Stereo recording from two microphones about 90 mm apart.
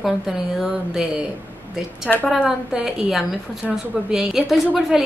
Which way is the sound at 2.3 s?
5° right (ahead or behind).